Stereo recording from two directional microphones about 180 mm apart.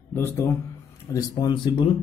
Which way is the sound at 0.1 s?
10° left (ahead or behind).